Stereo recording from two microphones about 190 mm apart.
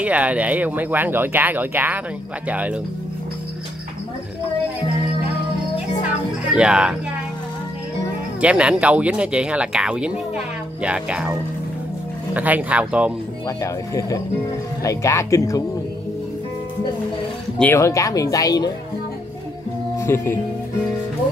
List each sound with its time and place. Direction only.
0.0 s speech: 5° right (ahead or behind)
6.5 s speech: 5° right (ahead or behind)
8.4 s speech: 5° right (ahead or behind)
12.4 s speech: 10° right (ahead or behind)
13.6 s speech: 15° left (ahead or behind)
17.6 s speech: 10° left (ahead or behind)
20.0 s speech: 15° left (ahead or behind)